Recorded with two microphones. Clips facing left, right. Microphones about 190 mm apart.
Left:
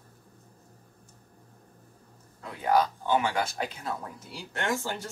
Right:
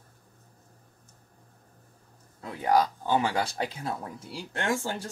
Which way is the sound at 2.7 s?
35° right (ahead or behind).